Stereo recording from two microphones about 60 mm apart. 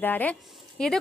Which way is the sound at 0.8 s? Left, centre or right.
Centre.